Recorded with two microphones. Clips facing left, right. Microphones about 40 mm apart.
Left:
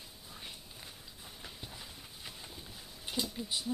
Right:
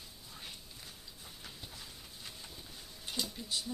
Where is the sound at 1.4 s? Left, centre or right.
Centre.